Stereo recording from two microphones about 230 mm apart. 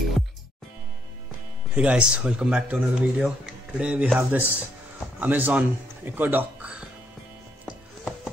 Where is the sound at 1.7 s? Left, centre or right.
Centre.